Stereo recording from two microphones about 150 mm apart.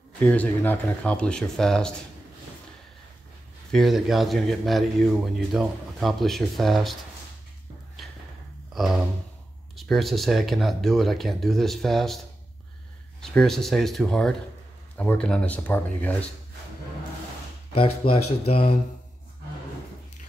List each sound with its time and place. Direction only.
0.3 s speech: 10° left (ahead or behind)
3.7 s a man's voice: centre (ahead or behind)
8.7 s a sound: centre (ahead or behind)
9.8 s a man's voice: centre (ahead or behind)
13.2 s a man's voice: 5° left (ahead or behind)
17.7 s speech: 40° left (ahead or behind)